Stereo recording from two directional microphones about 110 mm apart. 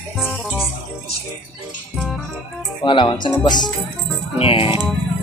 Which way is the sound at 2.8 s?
45° left (ahead or behind).